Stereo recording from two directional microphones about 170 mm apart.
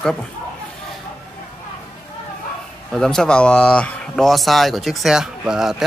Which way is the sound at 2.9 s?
5° left (ahead or behind).